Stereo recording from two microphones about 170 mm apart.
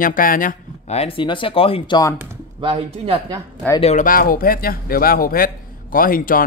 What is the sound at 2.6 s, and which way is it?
Speech, 35° right (ahead or behind).